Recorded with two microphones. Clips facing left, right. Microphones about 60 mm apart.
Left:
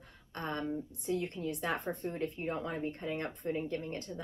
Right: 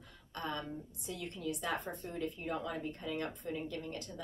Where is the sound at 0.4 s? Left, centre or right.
Left.